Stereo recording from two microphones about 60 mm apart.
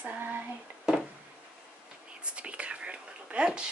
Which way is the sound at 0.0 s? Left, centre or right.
Right.